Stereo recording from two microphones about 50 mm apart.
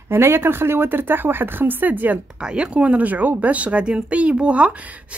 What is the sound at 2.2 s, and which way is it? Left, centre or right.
Speech, centre.